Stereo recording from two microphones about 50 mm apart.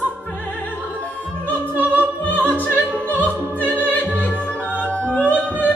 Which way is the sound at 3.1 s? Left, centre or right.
Right.